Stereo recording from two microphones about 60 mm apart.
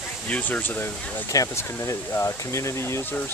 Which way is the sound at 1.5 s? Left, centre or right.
Left.